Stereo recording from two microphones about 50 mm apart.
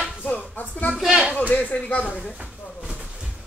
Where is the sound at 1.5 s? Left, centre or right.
Left.